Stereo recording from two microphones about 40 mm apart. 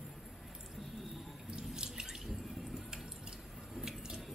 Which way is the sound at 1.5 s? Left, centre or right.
Centre.